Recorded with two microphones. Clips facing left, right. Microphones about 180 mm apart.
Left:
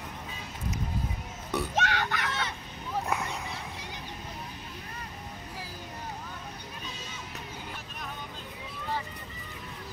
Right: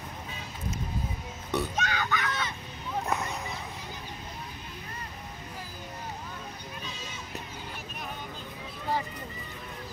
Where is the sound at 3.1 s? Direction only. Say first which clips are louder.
Right 2 dB; 10° left (ahead or behind).